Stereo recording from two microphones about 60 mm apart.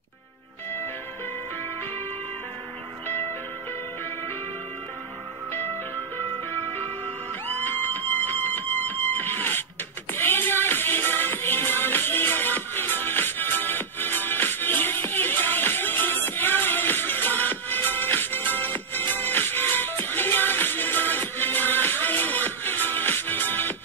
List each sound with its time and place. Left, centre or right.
7.4 s music: left